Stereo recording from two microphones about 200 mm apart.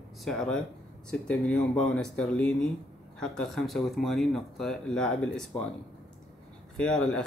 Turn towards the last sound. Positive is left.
turn(degrees=5)  # may be behind; listen again after turning